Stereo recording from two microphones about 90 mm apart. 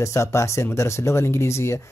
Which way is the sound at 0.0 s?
35° left (ahead or behind).